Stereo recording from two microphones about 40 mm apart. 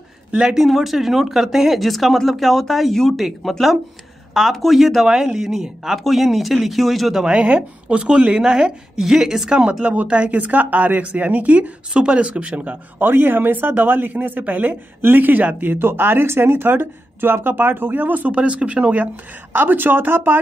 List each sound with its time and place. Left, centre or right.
0.6 s speech: centre
5.0 s speech: centre
7.3 s speech: right
8.9 s speech: centre
9.6 s speech: right
10.0 s speech: right
11.9 s speech: right
13.0 s speech: right
15.0 s speech: right
18.3 s speech: right
19.5 s speech: right